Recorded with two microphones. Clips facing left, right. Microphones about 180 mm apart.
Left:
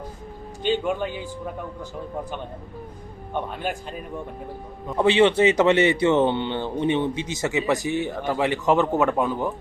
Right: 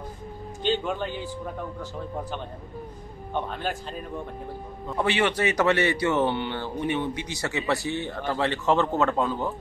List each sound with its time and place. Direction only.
0.7 s speech: 10° left (ahead or behind)
3.3 s a man's voice: 10° left (ahead or behind)